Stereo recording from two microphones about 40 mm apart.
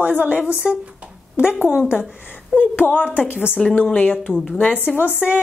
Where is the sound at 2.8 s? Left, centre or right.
Left.